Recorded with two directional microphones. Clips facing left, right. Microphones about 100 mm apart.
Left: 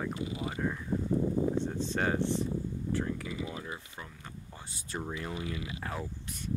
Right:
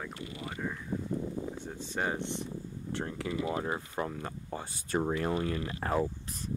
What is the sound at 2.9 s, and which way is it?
Speech, 75° right (ahead or behind).